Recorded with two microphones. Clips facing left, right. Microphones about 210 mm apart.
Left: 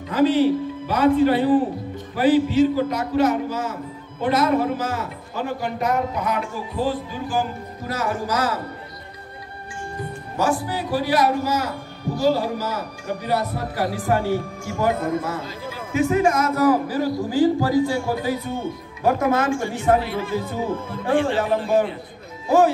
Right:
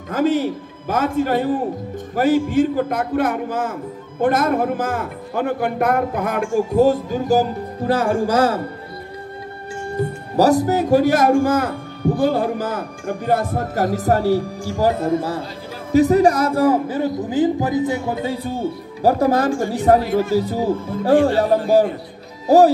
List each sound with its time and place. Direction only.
0.1 s speech: 45° right (ahead or behind); by 8.5 s 30° right (ahead or behind)
10.3 s a man's voice: 40° right (ahead or behind)